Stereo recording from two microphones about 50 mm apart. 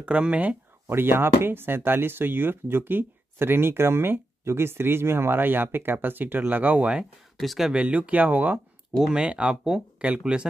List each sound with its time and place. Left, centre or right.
0.0 s speech: right
0.8 s speech: right
7.3 s speech: centre
7.7 s speech: right
9.1 s speech: centre